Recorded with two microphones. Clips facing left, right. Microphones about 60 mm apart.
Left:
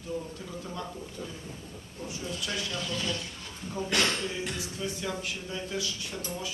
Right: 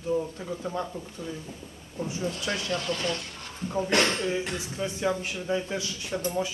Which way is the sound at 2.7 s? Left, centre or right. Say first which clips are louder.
Right 4 dB; right.